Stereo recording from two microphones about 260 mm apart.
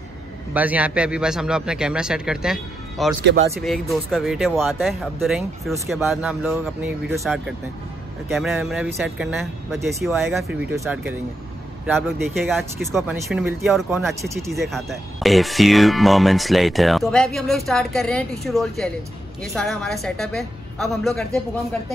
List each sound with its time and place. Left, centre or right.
0.5 s speech: centre
3.2 s speech: right
4.1 s speech: centre